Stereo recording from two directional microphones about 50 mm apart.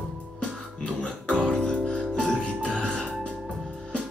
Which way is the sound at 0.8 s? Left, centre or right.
Left.